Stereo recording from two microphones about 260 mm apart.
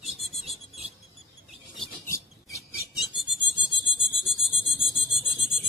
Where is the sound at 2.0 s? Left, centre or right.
Centre.